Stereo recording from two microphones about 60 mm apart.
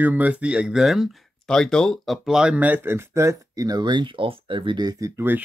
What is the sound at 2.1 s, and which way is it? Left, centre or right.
Speech, centre.